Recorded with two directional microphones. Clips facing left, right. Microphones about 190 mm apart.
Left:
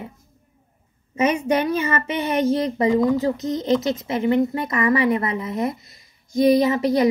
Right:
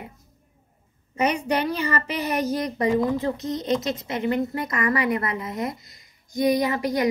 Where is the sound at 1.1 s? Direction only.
25° left (ahead or behind).